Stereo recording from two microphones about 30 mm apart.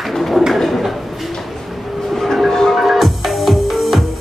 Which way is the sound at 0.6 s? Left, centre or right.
Centre.